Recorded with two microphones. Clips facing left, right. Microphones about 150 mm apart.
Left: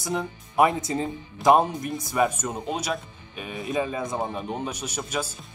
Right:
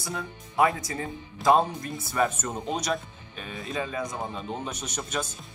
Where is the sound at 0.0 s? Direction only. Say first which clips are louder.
Left 6 dB; 20° left (ahead or behind).